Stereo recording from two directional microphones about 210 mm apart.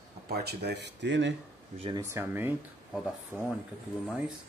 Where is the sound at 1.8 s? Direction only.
20° right (ahead or behind).